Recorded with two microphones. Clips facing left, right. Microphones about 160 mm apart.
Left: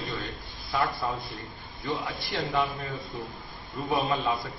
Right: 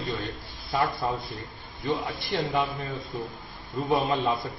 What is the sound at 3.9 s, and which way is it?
Speech, 20° right (ahead or behind).